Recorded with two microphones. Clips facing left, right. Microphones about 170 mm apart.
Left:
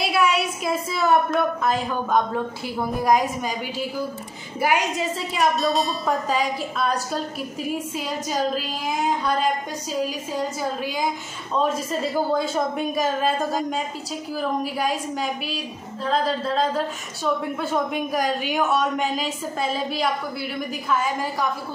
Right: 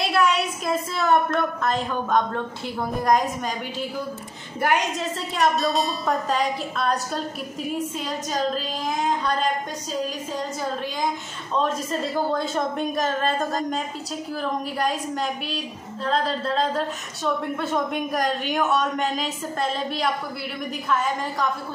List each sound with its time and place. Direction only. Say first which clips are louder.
0.0 s a woman's voice: even; 5° left (ahead or behind)
4.6 s a woman's voice: left 1 dB; 5° left (ahead or behind)
8.3 s a woman's voice: left 1 dB; 5° left (ahead or behind)